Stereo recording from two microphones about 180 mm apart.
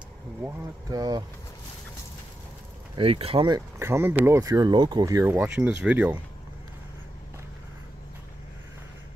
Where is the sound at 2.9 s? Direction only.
30° right (ahead or behind); by 6.2 s 10° right (ahead or behind).